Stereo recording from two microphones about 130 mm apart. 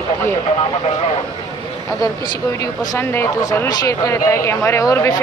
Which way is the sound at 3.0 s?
15° left (ahead or behind).